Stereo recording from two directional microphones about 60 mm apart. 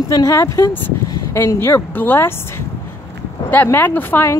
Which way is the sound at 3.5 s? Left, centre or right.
Left.